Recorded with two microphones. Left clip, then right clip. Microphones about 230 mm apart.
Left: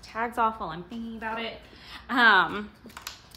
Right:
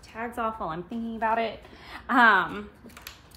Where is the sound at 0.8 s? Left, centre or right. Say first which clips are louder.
Right 7 dB; centre.